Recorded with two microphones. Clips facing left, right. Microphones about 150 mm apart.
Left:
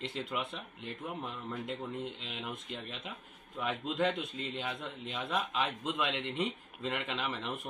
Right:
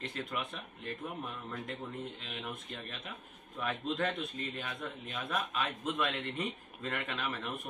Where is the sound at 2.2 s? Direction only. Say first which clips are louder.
Left 1 dB; 15° left (ahead or behind).